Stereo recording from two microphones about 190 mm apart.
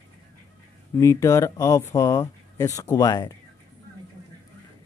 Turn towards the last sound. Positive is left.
turn(degrees=20)  # may be behind; listen again after turning